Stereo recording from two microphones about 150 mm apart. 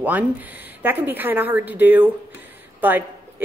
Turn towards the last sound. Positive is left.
turn(degrees=-10)  # may be behind; listen again after turning